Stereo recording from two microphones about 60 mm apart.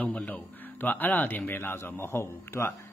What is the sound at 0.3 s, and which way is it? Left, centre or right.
Speech, left.